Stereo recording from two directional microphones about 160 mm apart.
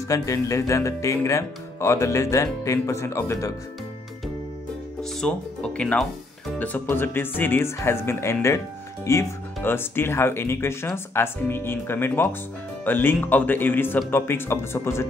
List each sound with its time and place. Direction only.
0.1 s speech: 20° left (ahead or behind)
5.2 s speech: 5° left (ahead or behind)